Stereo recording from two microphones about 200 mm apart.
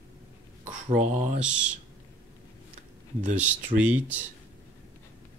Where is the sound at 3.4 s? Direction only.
5° right (ahead or behind).